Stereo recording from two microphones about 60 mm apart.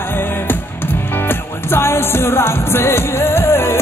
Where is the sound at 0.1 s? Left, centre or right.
Left.